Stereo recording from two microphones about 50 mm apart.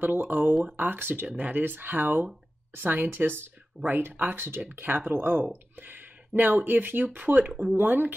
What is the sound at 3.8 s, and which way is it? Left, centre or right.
Speech, right.